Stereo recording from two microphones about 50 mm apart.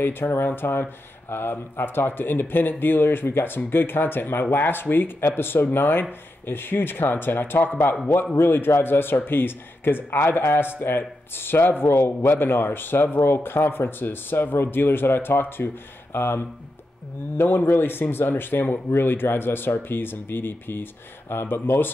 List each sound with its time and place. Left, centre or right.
0.0 s speech: left
17.5 s speech: left